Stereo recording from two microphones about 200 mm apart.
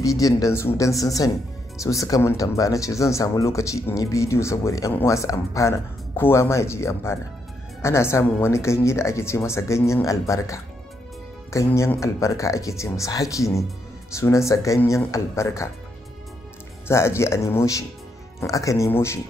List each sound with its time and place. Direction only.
0.0 s speech: 15° left (ahead or behind)
16.8 s speech: 15° left (ahead or behind)